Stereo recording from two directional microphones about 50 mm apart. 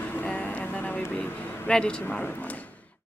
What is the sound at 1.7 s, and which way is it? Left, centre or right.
Speech, centre.